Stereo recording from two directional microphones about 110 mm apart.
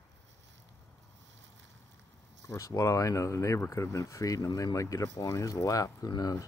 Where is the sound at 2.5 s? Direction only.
30° left (ahead or behind).